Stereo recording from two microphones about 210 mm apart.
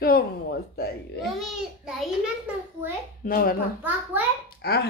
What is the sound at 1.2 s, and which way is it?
Speech, centre (ahead or behind).